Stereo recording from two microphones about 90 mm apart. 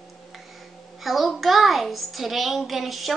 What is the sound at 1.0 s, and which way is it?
A child's voice, centre (ahead or behind).